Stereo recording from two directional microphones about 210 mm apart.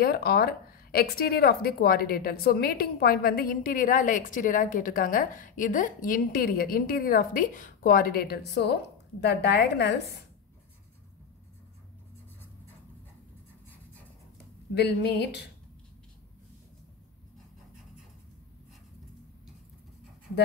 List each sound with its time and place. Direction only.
0.0 s speech: 45° left (ahead or behind)
14.7 s speech: 50° left (ahead or behind)